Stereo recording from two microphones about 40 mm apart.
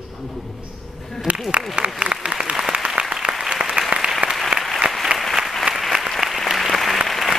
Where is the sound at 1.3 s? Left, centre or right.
Right.